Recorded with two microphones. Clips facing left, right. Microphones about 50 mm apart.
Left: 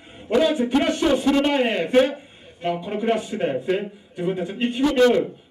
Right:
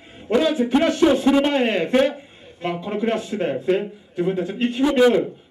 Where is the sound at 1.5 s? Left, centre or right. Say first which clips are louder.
Right 1 dB; centre.